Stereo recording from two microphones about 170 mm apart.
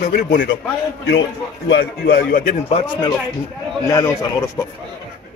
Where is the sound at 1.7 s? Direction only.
65° left (ahead or behind).